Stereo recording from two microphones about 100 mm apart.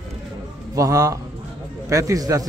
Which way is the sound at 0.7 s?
35° right (ahead or behind).